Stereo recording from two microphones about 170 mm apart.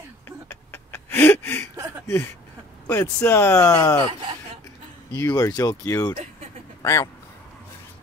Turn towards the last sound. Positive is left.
turn(degrees=15)  # may be behind; listen again after turning